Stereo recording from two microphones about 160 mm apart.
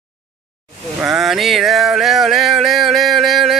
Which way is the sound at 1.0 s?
Centre (ahead or behind).